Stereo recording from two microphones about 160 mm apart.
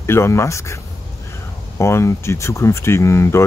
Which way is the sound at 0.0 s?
15° left (ahead or behind).